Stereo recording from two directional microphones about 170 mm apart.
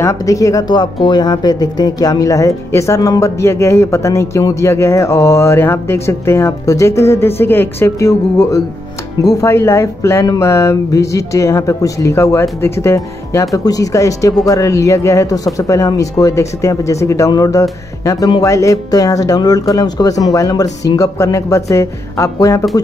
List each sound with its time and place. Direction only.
0.0 s speech: 20° left (ahead or behind)